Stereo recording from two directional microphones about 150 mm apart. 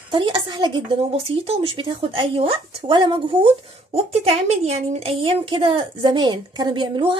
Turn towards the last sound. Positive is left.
turn(degrees=-35)  # may be behind; listen again after turning